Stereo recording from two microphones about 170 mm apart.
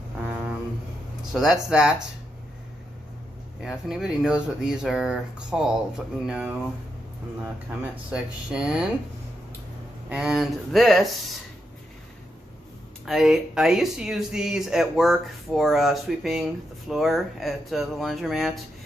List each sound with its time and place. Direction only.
1.3 s speech: centre (ahead or behind)
3.6 s speech: 5° right (ahead or behind)
8.1 s speech: 5° right (ahead or behind)
10.0 s speech: 5° right (ahead or behind)
13.0 s speech: centre (ahead or behind)